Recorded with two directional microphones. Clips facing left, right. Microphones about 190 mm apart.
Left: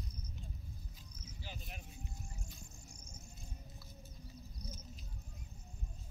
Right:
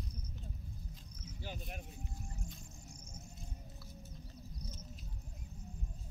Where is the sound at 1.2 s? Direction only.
50° right (ahead or behind).